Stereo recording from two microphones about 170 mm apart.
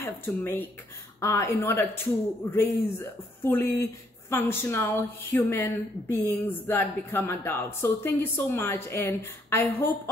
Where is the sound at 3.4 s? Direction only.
15° left (ahead or behind).